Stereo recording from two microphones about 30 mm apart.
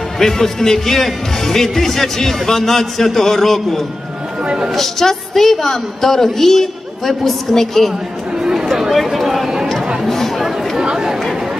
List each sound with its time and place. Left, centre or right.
0.2 s a woman's voice: centre
8.9 s a sound: centre
10.0 s a woman's voice: centre
10.8 s chatter: right